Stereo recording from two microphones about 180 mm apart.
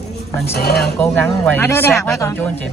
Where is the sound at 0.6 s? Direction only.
60° left (ahead or behind).